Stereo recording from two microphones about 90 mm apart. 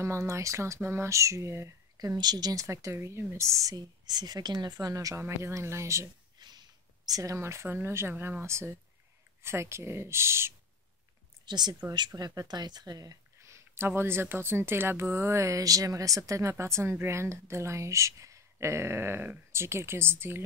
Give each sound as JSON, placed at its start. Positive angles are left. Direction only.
{"t": 0.0, "sound": "speech", "side_deg": -35}
{"t": 2.0, "sound": "a woman's voice", "side_deg": -45}
{"t": 4.7, "sound": "speech", "side_deg": -40}
{"t": 6.4, "sound": "speech", "side_deg": -50}
{"t": 11.4, "sound": "speech", "side_deg": -55}